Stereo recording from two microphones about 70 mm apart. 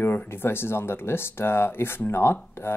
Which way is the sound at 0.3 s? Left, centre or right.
Left.